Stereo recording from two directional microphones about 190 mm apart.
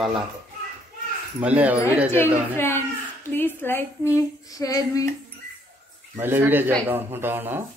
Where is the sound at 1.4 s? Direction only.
5° right (ahead or behind).